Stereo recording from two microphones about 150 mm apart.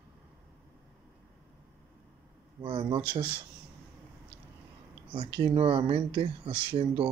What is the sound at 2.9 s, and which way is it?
Speech, 35° right (ahead or behind).